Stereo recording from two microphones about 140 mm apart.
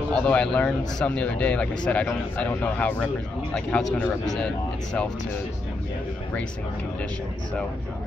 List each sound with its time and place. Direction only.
0.1 s speech: 5° left (ahead or behind)